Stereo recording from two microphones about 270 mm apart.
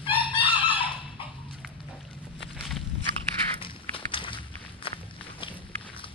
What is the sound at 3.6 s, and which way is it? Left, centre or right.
Walk, centre.